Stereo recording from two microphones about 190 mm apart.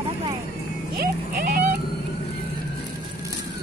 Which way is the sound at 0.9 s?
50° right (ahead or behind).